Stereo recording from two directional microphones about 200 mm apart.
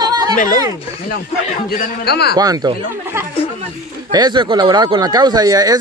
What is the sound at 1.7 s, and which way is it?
Speech, 55° left (ahead or behind).